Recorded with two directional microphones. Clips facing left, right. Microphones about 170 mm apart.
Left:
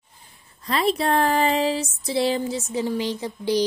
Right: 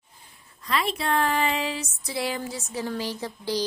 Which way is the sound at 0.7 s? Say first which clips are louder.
Left 5 dB; 35° left (ahead or behind).